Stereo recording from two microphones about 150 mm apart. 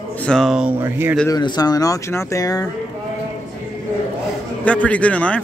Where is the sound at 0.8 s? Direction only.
15° right (ahead or behind).